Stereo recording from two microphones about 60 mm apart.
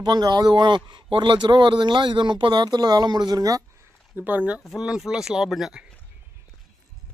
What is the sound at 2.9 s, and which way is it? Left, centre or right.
Speech, right.